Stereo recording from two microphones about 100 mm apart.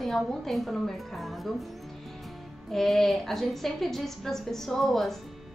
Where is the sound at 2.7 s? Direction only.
Centre (ahead or behind).